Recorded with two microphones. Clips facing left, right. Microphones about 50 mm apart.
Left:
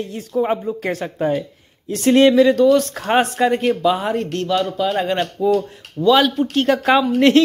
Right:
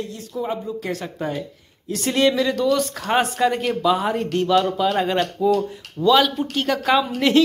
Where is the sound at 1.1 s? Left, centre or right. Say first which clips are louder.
Left 7 dB; centre.